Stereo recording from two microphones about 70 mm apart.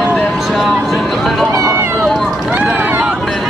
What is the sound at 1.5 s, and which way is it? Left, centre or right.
Run, right.